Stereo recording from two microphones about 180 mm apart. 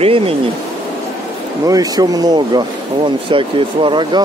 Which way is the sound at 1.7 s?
20° right (ahead or behind).